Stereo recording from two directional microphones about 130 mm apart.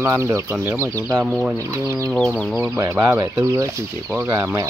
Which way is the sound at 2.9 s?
20° right (ahead or behind).